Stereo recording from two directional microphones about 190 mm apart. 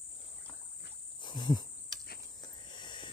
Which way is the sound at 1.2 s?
25° left (ahead or behind).